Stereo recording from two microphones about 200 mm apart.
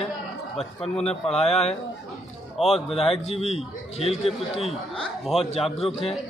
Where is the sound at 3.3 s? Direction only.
30° left (ahead or behind).